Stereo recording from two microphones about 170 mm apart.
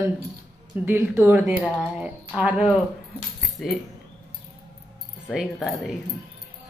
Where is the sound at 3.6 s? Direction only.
5° left (ahead or behind).